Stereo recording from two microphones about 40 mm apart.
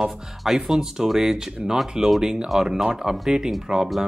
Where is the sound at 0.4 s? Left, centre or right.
Centre.